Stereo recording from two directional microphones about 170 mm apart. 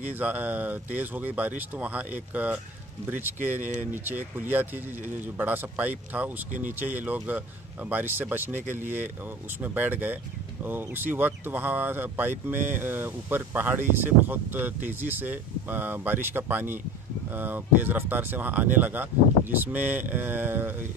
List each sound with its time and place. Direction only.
0.0 s speech: 10° right (ahead or behind)